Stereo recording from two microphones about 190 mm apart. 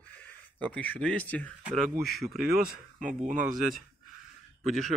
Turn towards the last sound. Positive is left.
turn(degrees=0)  # may be behind; listen again after turning